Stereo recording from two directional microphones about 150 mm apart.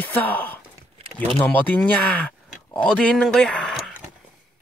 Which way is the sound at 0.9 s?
40° right (ahead or behind).